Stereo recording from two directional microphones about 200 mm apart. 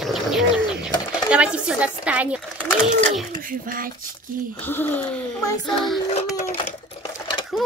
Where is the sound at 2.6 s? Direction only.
5° left (ahead or behind).